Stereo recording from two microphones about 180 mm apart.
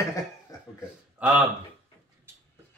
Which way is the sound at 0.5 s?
20° left (ahead or behind).